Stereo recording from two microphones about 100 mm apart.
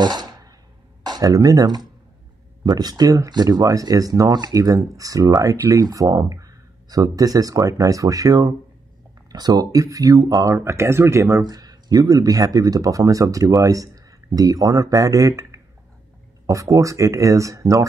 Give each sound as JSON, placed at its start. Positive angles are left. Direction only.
{"t": 0.0, "sound": "a sound", "side_deg": -45}
{"t": 1.0, "sound": "speech", "side_deg": -40}
{"t": 11.4, "sound": "speech", "side_deg": -40}